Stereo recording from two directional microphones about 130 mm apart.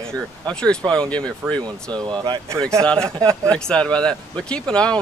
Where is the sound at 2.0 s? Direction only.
35° right (ahead or behind).